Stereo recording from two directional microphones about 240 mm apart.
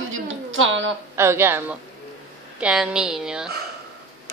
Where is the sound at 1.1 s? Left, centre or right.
Centre.